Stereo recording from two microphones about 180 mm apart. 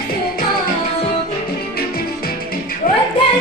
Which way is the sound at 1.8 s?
55° left (ahead or behind).